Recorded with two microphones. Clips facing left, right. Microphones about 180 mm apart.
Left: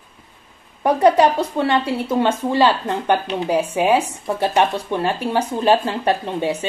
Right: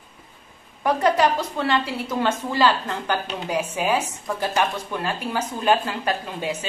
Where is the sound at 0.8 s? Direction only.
15° left (ahead or behind).